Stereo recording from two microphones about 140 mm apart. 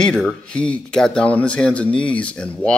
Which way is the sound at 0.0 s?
5° left (ahead or behind).